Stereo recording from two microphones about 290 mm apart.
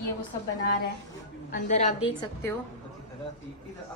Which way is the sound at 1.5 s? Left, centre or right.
Left.